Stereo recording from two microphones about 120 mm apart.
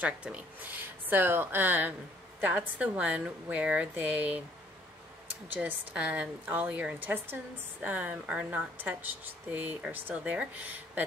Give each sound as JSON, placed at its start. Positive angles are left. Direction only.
{"t": 0.0, "sound": "speech", "side_deg": -10}
{"t": 5.5, "sound": "speech", "side_deg": -10}